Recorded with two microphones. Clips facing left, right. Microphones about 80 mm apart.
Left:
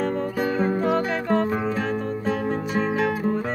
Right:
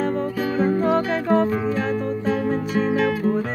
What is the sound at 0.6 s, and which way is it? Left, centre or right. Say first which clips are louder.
Music: right 4 dB; centre.